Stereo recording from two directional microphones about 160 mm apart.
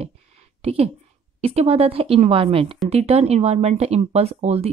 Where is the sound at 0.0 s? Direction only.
40° right (ahead or behind).